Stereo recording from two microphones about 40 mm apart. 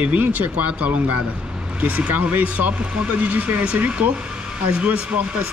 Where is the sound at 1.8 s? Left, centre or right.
Right.